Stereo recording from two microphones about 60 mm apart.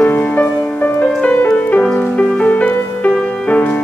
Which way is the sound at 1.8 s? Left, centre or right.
Centre.